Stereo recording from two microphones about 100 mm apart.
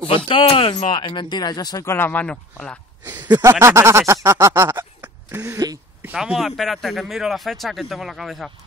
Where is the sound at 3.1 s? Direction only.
45° right (ahead or behind).